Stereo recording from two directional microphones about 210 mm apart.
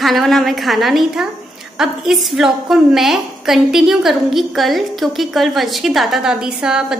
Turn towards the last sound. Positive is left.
turn(degrees=-5)  # may be behind; listen again after turning